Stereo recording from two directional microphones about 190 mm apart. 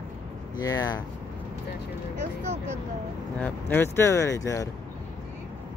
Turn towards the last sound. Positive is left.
turn(degrees=15)  # may be behind; listen again after turning